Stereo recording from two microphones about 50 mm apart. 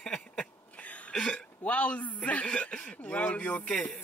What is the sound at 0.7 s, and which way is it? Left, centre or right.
Cough, left.